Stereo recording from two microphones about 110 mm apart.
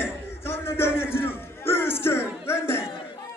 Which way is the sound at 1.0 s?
20° left (ahead or behind).